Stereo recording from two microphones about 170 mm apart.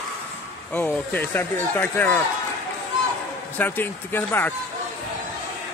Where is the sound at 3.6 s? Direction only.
10° left (ahead or behind).